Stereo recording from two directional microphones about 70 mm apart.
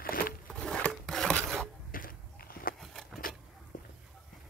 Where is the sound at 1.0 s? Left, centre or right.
Centre.